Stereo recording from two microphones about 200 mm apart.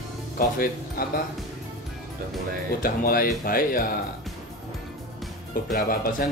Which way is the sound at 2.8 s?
45° left (ahead or behind).